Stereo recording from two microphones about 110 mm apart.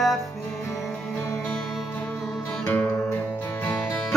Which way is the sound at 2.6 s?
20° left (ahead or behind).